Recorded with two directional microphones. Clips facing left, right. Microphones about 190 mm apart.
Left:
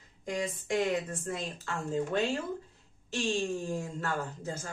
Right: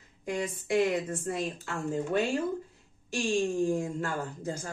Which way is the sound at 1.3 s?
15° right (ahead or behind).